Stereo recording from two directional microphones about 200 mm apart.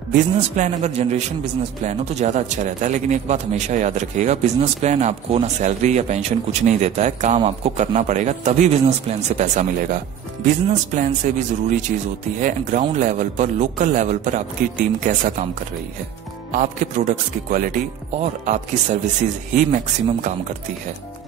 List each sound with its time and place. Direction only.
0.1 s a man's voice: 40° right (ahead or behind)
11.0 s a man's voice: 40° right (ahead or behind)
16.5 s a man's voice: 40° right (ahead or behind)